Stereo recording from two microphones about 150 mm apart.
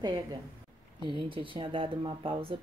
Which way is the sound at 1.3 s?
35° right (ahead or behind).